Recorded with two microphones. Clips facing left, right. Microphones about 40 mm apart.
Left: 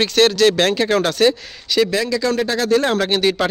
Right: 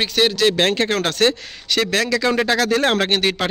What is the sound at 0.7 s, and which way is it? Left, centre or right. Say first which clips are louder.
Speech: left 2 dB; right.